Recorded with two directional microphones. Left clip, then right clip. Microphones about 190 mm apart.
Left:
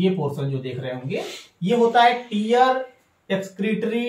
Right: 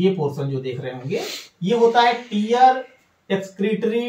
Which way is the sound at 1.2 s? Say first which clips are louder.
Right 3 dB; 45° right (ahead or behind).